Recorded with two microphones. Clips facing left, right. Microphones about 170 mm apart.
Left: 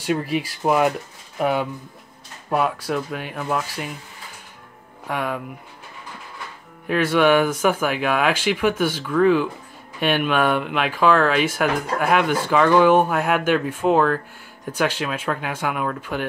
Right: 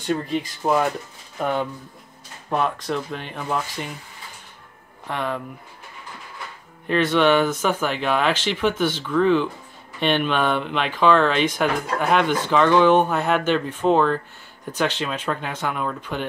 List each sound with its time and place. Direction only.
0.0 s speech: 10° left (ahead or behind)
5.0 s speech: 10° left (ahead or behind)
6.9 s speech: 10° left (ahead or behind)